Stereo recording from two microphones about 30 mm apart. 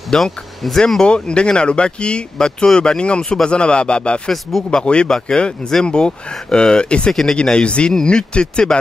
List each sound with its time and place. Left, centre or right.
0.1 s speech: left
1.0 s speech: left
2.3 s speech: left
4.3 s speech: centre
4.6 s speech: left
7.1 s speech: centre
7.5 s speech: left